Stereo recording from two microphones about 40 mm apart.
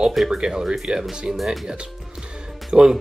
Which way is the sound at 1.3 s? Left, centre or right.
Centre.